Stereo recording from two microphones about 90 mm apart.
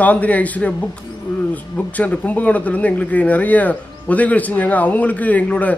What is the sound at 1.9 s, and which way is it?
Speech, 15° left (ahead or behind).